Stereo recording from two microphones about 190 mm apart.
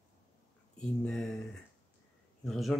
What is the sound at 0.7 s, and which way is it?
Speech, 5° left (ahead or behind).